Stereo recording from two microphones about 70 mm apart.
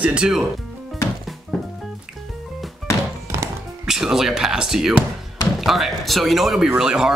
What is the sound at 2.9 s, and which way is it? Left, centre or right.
Music, left.